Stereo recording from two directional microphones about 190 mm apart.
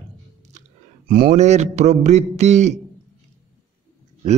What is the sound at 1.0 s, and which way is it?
Speech, 55° right (ahead or behind).